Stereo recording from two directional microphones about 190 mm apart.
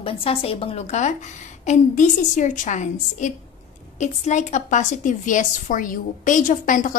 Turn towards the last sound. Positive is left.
turn(degrees=40)  # may be behind; listen again after turning